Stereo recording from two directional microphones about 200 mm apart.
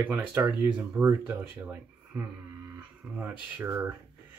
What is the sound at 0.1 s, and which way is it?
Speech, 10° right (ahead or behind).